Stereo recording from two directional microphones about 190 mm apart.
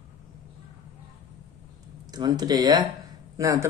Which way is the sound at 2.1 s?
20° right (ahead or behind).